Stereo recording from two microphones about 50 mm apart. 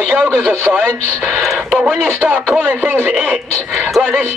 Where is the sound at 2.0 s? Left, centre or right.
Right.